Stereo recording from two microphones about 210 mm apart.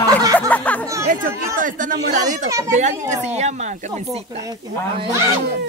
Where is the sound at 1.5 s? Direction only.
40° right (ahead or behind).